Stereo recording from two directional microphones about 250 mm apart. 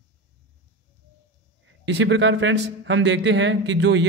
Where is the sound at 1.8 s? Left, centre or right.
Right.